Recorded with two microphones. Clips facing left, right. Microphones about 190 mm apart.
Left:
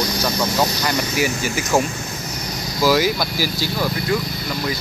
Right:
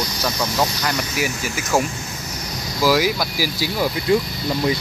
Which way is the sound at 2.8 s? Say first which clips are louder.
Left 1 dB; 5° right (ahead or behind).